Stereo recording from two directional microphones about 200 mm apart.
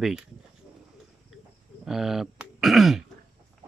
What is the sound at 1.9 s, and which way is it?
Speech, centre (ahead or behind).